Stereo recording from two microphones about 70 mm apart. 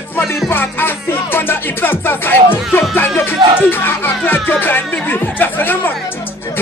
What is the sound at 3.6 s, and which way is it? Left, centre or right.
Speech, left.